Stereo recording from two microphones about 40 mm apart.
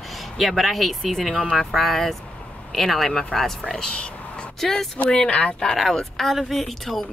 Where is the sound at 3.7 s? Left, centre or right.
Left.